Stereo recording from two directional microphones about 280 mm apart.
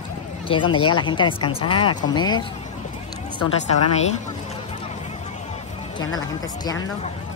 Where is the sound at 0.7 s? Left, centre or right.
Left.